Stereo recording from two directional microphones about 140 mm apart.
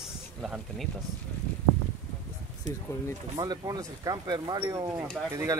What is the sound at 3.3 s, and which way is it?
Speech, 30° right (ahead or behind).